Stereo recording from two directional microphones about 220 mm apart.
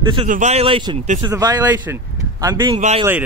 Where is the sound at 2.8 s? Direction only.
30° right (ahead or behind).